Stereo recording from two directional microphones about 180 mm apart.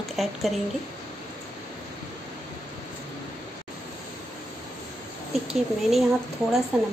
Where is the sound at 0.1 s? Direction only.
Centre (ahead or behind).